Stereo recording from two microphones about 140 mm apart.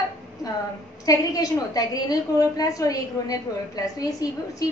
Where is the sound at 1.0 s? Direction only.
25° left (ahead or behind).